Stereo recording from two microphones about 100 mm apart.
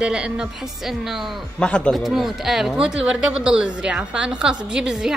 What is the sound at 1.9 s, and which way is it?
A woman's voice, centre (ahead or behind).